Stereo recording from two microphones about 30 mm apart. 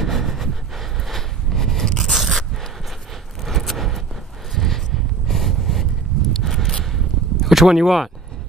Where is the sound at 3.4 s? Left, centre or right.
Centre.